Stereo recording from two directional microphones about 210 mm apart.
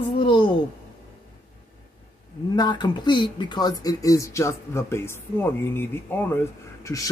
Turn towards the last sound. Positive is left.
turn(degrees=15)  # may be behind; listen again after turning